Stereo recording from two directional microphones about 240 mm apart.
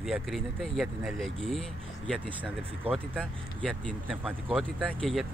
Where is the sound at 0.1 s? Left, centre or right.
Centre.